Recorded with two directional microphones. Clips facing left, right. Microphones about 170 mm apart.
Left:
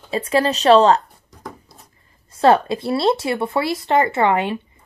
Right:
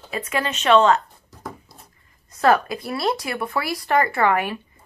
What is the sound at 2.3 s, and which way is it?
Speech, 25° left (ahead or behind).